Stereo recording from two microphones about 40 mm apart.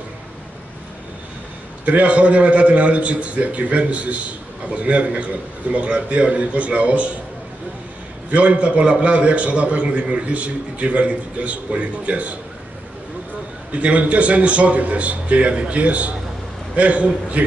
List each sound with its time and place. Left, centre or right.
1.9 s a man's voice: right
8.3 s a man's voice: right
13.7 s a man's voice: right